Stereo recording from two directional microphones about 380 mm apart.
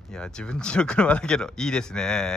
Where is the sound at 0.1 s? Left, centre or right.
Centre.